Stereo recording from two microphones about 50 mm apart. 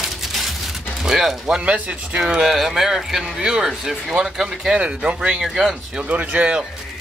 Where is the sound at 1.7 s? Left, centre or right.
Right.